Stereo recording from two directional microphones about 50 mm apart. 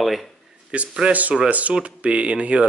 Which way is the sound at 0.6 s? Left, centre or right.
Centre.